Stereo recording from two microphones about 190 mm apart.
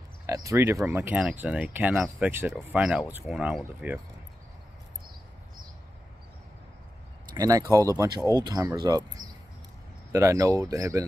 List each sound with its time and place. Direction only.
0.3 s speech: 15° right (ahead or behind)
7.2 s speech: 20° right (ahead or behind)